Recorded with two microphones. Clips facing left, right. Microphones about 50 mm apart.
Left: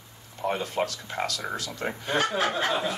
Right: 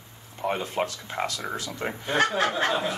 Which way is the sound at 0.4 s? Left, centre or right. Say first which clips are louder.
Even; right.